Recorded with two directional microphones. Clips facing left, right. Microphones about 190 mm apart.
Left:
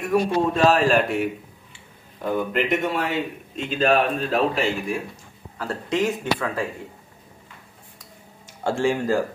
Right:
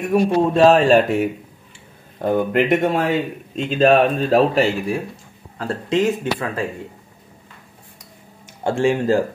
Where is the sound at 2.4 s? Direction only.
55° right (ahead or behind).